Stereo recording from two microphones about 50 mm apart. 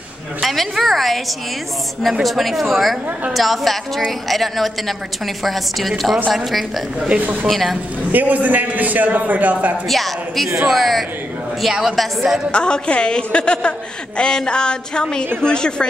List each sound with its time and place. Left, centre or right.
0.4 s a woman's voice: centre
2.2 s a woman's voice: centre
8.1 s a man's voice: right
9.8 s a woman's voice: centre
12.4 s a woman's voice: centre